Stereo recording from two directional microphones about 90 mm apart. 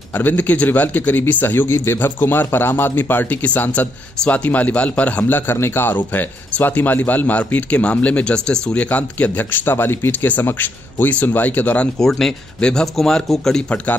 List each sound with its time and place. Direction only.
0.1 s a man's voice: 20° left (ahead or behind)